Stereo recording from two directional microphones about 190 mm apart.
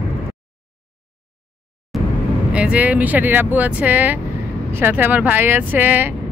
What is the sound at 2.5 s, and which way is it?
Speech, 5° right (ahead or behind).